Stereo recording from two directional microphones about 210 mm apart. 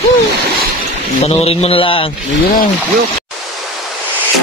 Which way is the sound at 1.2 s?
30° left (ahead or behind).